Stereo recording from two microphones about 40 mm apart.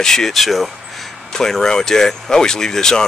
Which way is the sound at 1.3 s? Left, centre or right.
Centre.